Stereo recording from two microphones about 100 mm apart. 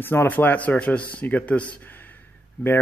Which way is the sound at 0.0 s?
20° left (ahead or behind).